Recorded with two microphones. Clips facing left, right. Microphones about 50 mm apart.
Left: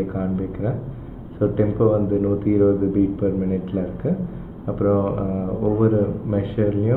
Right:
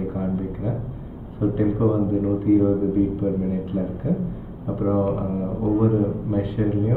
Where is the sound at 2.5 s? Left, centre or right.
Left.